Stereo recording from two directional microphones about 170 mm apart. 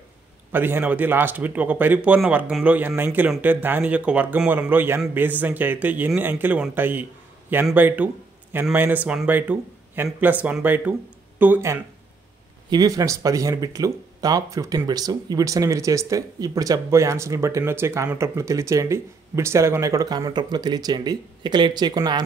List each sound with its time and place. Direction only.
0.5 s speech: 10° right (ahead or behind)